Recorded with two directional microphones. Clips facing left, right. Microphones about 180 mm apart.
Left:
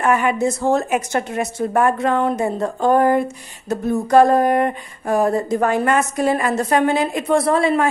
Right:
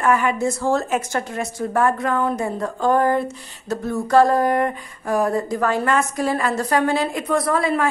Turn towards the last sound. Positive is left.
turn(degrees=25)  # may be behind; listen again after turning